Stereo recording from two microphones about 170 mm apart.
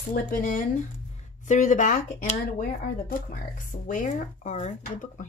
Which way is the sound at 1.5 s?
45° left (ahead or behind).